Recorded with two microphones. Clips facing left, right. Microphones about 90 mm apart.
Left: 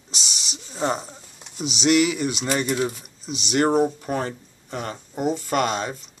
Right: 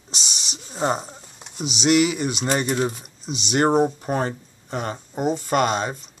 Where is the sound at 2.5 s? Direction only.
35° right (ahead or behind).